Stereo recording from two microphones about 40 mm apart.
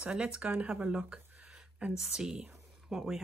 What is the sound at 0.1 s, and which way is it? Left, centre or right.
Speech, right.